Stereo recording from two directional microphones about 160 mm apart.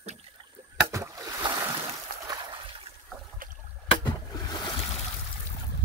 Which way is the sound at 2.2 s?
25° right (ahead or behind).